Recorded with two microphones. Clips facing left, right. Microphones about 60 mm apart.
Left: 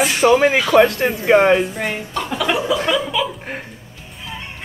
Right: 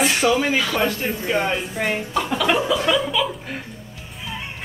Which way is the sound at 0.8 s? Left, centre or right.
Left.